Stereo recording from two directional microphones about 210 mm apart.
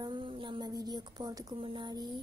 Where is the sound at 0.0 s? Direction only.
25° right (ahead or behind).